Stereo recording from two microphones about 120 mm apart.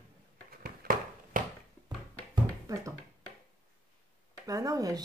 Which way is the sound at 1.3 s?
90° right.